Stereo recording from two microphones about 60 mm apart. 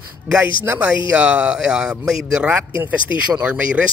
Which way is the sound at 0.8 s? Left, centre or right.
Centre.